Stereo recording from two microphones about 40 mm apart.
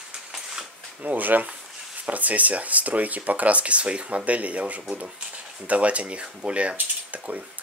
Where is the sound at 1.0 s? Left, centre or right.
Right.